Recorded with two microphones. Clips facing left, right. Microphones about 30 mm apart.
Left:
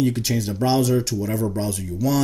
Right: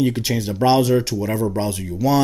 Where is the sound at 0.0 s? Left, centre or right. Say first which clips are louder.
Right 2 dB; centre.